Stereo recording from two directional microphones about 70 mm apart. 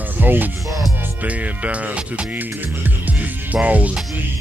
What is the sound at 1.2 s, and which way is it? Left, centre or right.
Music, right.